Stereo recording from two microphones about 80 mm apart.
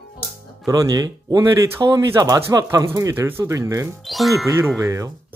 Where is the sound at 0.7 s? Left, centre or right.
Right.